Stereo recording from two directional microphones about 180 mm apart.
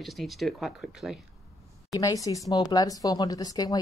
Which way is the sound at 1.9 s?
20° left (ahead or behind).